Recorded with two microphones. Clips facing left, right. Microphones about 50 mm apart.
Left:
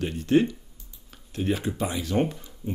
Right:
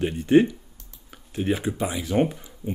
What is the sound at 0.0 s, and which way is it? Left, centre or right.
Speech, centre.